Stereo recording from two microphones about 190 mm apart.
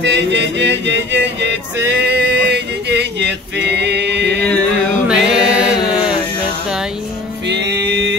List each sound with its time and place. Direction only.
0.0 s music: 70° right (ahead or behind)
5.0 s music: 5° right (ahead or behind)
7.4 s music: 65° right (ahead or behind)